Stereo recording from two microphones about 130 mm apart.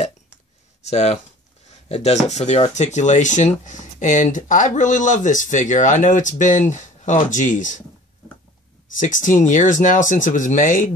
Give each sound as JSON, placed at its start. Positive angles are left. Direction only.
{"t": 0.8, "sound": "speech", "side_deg": 60}
{"t": 8.9, "sound": "speech", "side_deg": 80}